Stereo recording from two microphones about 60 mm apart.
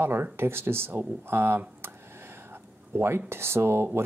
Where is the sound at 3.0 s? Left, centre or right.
Right.